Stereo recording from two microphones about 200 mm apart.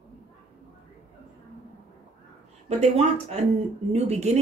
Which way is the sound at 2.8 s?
30° right (ahead or behind).